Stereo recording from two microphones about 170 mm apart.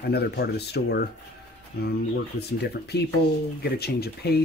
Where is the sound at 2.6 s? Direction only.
70° left (ahead or behind).